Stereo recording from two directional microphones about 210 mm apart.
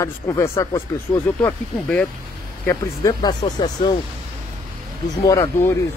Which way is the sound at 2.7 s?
20° left (ahead or behind).